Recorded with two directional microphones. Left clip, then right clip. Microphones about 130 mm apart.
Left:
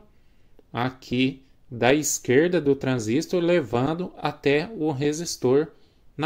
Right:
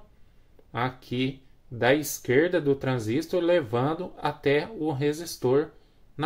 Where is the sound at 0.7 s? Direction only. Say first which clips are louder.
Left 2 dB; 45° left (ahead or behind).